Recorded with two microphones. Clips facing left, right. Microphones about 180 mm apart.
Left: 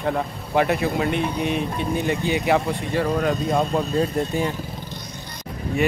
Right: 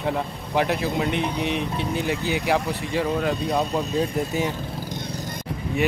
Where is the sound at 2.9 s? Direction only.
5° right (ahead or behind).